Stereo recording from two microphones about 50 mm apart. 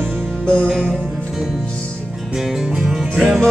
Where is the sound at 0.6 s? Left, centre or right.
Centre.